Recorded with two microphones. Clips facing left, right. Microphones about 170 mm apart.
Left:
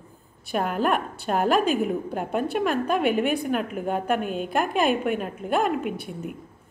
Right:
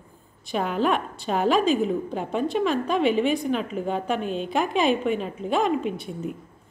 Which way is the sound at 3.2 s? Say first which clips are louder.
Right 1 dB; 60° left (ahead or behind).